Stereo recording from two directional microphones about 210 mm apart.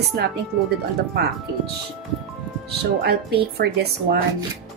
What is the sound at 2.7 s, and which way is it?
Speech, 50° right (ahead or behind).